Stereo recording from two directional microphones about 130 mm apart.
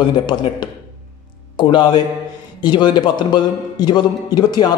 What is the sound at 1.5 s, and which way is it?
A man's voice, 35° left (ahead or behind).